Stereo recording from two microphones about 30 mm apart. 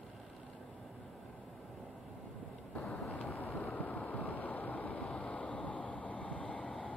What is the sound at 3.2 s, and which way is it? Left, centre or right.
Vehicle, left.